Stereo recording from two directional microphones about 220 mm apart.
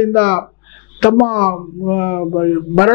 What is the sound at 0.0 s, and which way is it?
A man's voice, 10° left (ahead or behind).